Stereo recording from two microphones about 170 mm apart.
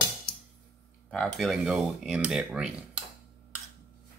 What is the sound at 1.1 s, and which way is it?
Speech, centre (ahead or behind).